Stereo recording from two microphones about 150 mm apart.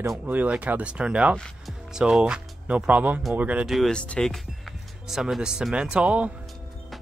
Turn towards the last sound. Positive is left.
turn(degrees=-5)  # may be behind; listen again after turning